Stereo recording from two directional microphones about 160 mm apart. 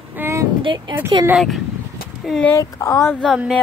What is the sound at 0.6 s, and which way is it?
Speech, 30° right (ahead or behind).